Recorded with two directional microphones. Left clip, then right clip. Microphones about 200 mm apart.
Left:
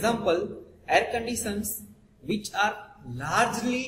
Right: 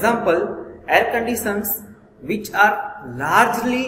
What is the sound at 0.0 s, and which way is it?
A man's voice, 15° left (ahead or behind).